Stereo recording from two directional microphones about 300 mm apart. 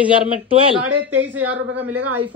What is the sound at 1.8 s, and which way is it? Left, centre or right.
Speech, right.